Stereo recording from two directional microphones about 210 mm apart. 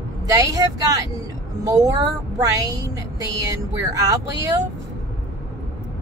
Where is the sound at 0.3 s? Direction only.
15° right (ahead or behind).